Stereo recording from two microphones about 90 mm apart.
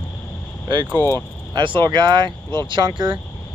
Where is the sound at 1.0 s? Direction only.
30° left (ahead or behind).